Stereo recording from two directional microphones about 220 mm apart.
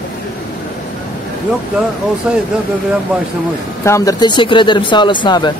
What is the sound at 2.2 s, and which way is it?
Speech, 5° right (ahead or behind).